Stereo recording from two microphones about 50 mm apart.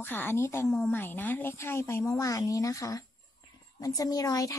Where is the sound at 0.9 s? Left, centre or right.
Left.